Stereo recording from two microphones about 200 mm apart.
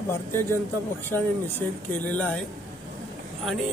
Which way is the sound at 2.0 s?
5° left (ahead or behind).